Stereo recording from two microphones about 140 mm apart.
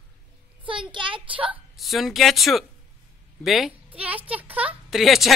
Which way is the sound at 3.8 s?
10° right (ahead or behind).